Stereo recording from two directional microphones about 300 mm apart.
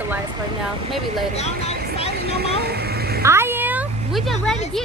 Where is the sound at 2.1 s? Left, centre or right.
Right.